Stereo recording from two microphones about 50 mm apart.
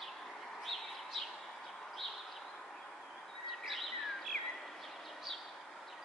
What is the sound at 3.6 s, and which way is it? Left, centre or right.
Bird vocalization, centre.